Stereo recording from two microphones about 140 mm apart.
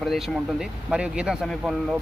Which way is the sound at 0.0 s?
Centre (ahead or behind).